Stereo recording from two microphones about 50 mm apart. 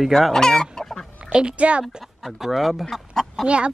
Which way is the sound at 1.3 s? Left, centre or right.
Right.